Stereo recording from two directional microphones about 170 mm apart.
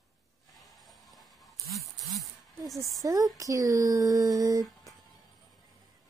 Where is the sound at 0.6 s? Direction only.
Centre (ahead or behind).